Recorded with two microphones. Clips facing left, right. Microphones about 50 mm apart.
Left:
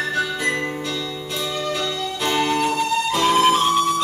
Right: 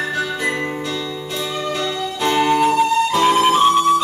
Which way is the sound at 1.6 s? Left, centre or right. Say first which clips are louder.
Right 2 dB; centre.